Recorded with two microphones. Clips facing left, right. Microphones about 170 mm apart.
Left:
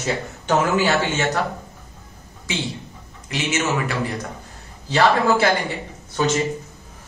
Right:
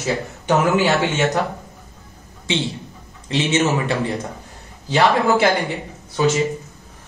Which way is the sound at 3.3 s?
30° right (ahead or behind).